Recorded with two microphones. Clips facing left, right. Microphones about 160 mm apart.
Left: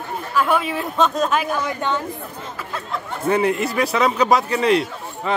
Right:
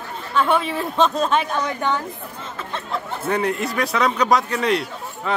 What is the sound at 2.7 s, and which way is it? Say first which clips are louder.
Speech: right 1 dB; centre (ahead or behind).